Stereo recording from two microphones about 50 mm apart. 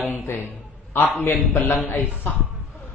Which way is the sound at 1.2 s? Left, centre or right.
Left.